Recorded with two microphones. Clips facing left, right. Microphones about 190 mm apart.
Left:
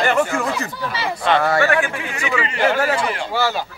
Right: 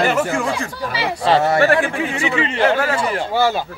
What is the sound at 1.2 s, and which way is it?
Speech, 30° right (ahead or behind).